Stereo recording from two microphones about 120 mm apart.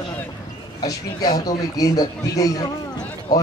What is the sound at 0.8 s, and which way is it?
A man's voice, 35° left (ahead or behind).